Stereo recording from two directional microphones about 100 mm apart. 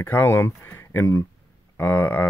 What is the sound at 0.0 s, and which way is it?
Speech, 20° left (ahead or behind).